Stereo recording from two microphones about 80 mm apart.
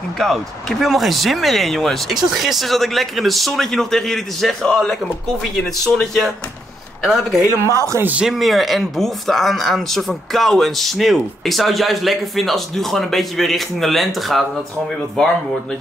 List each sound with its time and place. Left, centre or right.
0.2 s speech: centre
8.0 s speech: centre
8.3 s speech: centre